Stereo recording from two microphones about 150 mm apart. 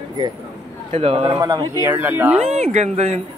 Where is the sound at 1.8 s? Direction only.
15° right (ahead or behind).